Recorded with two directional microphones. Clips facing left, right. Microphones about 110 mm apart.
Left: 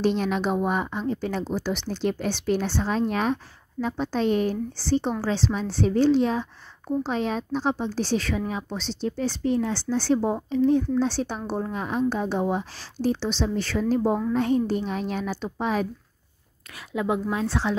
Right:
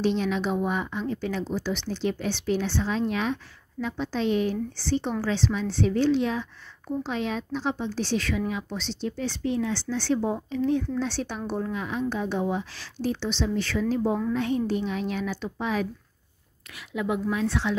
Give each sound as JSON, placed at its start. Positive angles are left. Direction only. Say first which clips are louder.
{"t": 0.0, "sound": "a woman's voice", "louder": "left 2 dB", "side_deg": 45}